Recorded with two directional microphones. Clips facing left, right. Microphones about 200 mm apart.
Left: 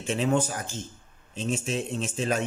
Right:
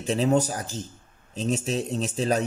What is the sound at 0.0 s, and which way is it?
A man's voice, 40° right (ahead or behind).